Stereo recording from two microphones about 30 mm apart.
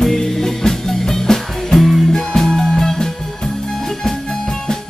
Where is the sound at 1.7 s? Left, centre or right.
Centre.